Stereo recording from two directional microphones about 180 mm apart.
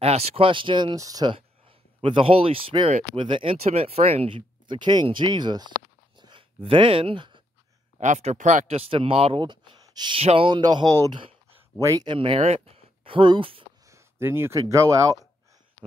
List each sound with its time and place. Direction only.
0.0 s speech: 35° right (ahead or behind)
6.1 s a sound: 25° right (ahead or behind)
8.0 s speech: 40° right (ahead or behind)
13.8 s speech: 15° right (ahead or behind)